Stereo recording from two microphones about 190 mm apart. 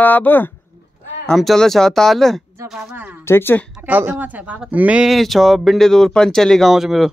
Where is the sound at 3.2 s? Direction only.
10° left (ahead or behind).